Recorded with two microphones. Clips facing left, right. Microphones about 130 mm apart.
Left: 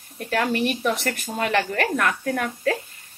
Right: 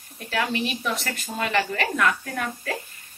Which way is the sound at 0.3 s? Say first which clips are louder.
Left 4 dB; 50° left (ahead or behind).